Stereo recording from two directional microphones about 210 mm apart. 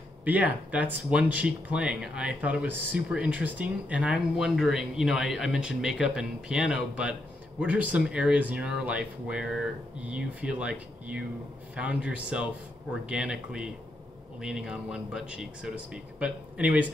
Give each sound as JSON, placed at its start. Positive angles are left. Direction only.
{"t": 0.2, "sound": "speech", "side_deg": -5}